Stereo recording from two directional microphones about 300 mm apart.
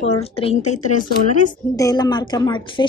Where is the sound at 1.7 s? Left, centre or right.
Centre.